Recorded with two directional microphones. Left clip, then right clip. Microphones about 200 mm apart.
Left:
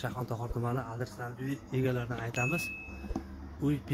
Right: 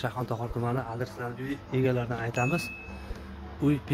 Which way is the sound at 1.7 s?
5° right (ahead or behind).